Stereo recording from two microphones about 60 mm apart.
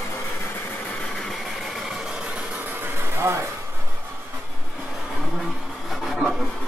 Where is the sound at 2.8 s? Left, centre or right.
Right.